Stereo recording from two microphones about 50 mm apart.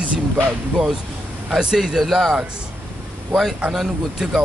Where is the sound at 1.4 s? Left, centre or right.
Centre.